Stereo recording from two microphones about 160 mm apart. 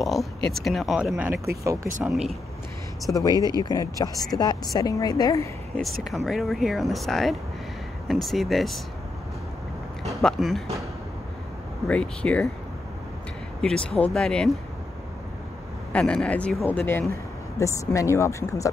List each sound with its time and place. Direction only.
0.0 s speech: centre (ahead or behind); by 1.9 s 20° right (ahead or behind)
3.1 s speech: 20° left (ahead or behind)
3.3 s speech: 25° right (ahead or behind)
3.6 s speech: 25° left (ahead or behind)
6.0 s speech: centre (ahead or behind)
10.0 s speech: centre (ahead or behind)
11.9 s speech: 5° left (ahead or behind)
13.6 s speech: 5° left (ahead or behind)
15.9 s speech: 5° left (ahead or behind)